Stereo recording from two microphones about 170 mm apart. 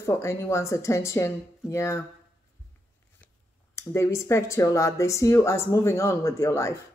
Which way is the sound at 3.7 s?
15° left (ahead or behind).